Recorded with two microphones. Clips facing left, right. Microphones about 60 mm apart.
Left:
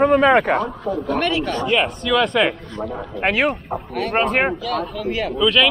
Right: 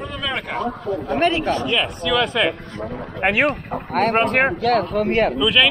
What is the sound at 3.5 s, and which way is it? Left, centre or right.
Speech, right.